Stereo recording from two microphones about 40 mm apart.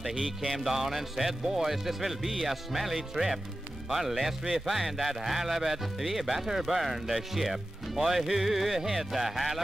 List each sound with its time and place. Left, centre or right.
0.4 s speech: centre